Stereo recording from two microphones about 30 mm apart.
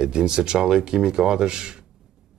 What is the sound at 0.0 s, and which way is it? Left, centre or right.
Speech, right.